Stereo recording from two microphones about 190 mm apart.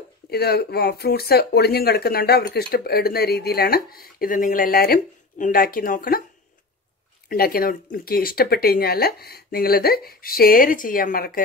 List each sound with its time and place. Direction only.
0.3 s speech: 55° left (ahead or behind)
7.2 s speech: 50° left (ahead or behind)